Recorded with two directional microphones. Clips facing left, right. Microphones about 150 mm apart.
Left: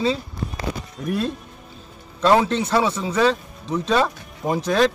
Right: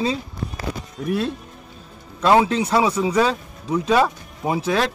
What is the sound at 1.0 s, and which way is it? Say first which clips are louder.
Speech: right 2 dB; centre (ahead or behind).